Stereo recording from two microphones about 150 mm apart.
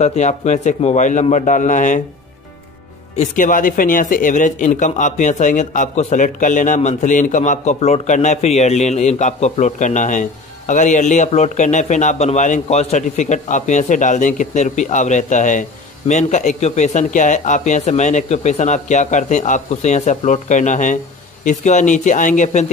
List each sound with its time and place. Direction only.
0.0 s speech: 50° left (ahead or behind)
3.2 s a man's voice: 60° left (ahead or behind)